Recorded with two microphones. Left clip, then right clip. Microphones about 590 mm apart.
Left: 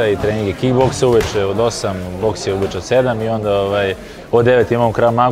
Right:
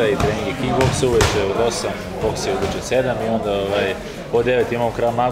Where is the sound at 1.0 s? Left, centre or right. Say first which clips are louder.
Left 7 dB; left.